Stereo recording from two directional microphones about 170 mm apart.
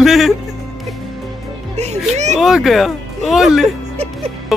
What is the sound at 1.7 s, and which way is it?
Music, 40° right (ahead or behind).